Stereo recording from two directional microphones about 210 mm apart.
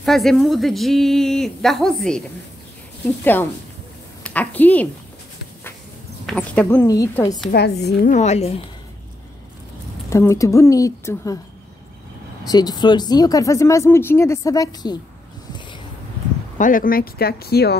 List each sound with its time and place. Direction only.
0.0 s a woman's voice: centre (ahead or behind)
6.2 s speech: 5° left (ahead or behind)
7.5 s speech: 50° left (ahead or behind)
8.1 s speech: 35° left (ahead or behind)
10.0 s speech: 15° left (ahead or behind)
12.4 s speech: 20° left (ahead or behind)
16.5 s speech: 40° left (ahead or behind)